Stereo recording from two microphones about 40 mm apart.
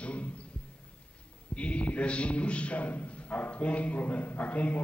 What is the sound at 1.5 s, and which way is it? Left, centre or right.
A man's voice, left.